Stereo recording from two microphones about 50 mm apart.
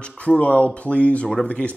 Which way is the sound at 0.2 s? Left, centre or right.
Left.